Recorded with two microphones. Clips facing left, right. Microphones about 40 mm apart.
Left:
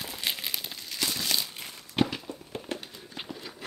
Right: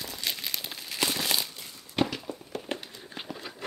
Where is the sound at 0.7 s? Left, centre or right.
Centre.